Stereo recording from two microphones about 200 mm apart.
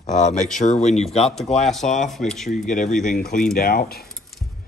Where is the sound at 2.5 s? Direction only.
40° left (ahead or behind).